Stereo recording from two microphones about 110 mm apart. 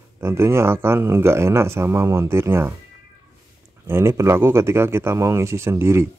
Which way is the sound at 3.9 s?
25° right (ahead or behind).